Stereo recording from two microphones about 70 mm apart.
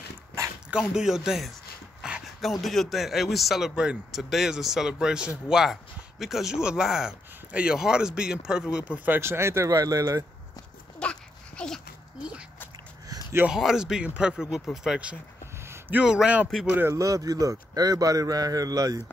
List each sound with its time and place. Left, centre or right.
0.7 s speech: centre
2.0 s dog: centre
2.6 s speech: centre
9.0 s speech: right
9.7 s a man's voice: right
11.0 s dog: centre
12.2 s a sound: centre
13.5 s speech: centre
16.1 s speech: centre
16.9 s a man's voice: right